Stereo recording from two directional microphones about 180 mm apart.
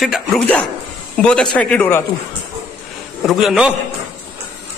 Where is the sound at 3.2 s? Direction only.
Centre (ahead or behind).